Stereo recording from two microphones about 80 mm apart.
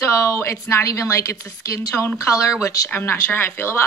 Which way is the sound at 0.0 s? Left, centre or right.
Left.